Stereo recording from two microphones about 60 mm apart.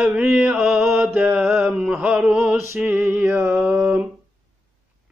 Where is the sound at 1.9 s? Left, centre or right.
Right.